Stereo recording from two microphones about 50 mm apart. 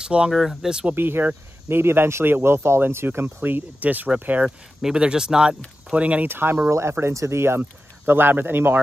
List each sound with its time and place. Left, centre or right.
0.0 s speech: right
0.3 s speech: centre
0.9 s speech: right
4.8 s speech: centre
5.9 s speech: right
6.2 s speech: right
6.7 s speech: right